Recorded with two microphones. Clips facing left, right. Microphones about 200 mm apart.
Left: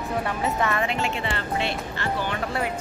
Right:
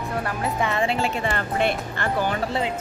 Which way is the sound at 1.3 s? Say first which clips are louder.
Right 4 dB; 50° right (ahead or behind).